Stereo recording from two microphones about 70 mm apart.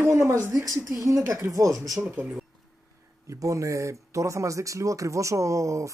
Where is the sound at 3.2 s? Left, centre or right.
Right.